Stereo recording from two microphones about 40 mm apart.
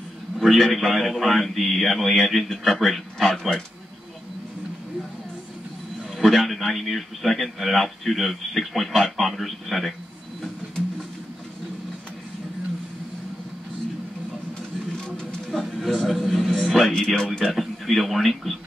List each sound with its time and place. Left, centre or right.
0.4 s a sound: centre
0.7 s a man's voice: centre
6.1 s a man's voice: centre
15.8 s a man's voice: centre
16.9 s speech: centre
17.4 s a man's voice: centre